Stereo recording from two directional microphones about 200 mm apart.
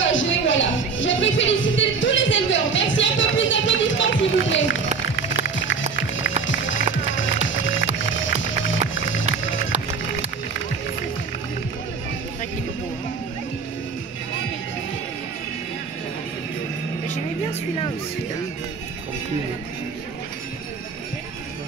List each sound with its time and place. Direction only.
0.0 s music: 75° left (ahead or behind)
7.2 s music: 70° left (ahead or behind)
17.1 s music: 35° left (ahead or behind)